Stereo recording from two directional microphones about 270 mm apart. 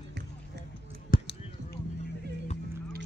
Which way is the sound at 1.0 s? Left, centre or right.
Left.